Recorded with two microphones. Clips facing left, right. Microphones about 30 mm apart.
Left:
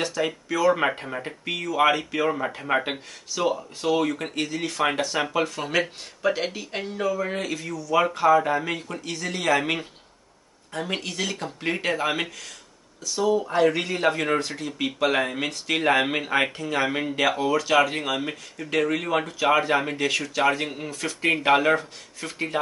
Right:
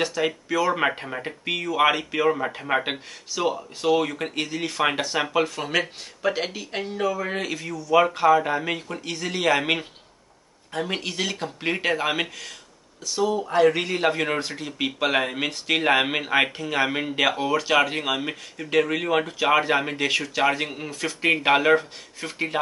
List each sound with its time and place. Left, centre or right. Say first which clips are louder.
0.0 s speech: right 2 dB; centre
9.0 s speech: right 3 dB; centre